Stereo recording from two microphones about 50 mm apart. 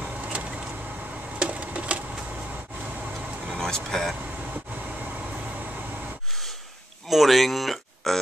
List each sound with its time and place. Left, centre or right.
1.4 s a sound: right
3.5 s speech: centre
7.1 s speech: centre